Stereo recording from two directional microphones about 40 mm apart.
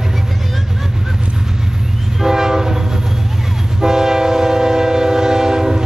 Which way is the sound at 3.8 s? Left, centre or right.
Centre.